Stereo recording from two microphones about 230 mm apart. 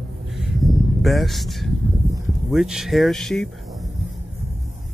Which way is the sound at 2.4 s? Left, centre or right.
Centre.